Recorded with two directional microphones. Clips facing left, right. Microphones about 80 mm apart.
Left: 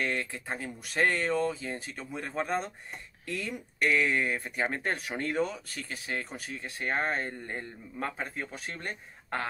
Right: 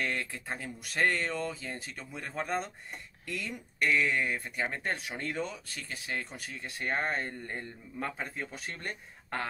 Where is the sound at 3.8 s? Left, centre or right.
Centre.